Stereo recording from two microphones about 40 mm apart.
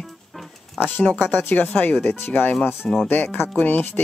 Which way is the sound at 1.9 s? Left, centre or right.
Left.